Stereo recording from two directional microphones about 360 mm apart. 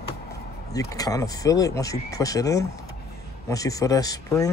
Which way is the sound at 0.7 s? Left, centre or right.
Centre.